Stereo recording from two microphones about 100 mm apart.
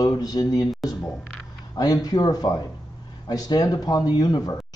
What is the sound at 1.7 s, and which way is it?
A man's voice, 40° left (ahead or behind).